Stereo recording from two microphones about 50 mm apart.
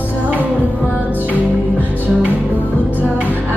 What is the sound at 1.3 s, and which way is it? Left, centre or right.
Music, left.